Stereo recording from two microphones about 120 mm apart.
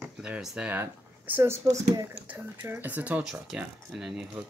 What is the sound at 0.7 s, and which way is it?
Speech, 15° right (ahead or behind).